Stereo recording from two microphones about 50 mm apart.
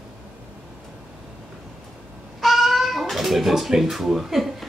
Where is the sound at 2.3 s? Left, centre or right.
Centre.